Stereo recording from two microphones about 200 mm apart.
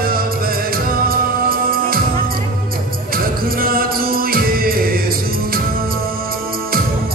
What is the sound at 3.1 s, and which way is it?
Music, 45° right (ahead or behind).